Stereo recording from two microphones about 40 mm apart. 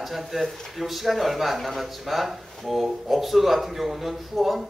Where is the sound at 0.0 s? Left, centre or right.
Centre.